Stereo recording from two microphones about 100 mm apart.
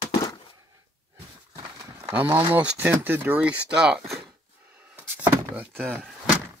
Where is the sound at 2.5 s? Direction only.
15° right (ahead or behind).